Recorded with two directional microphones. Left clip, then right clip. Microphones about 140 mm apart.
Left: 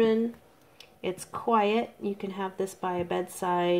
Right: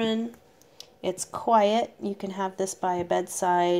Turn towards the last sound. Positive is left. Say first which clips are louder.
# right 4 dB
turn(degrees=-55)  # may be behind; listen again after turning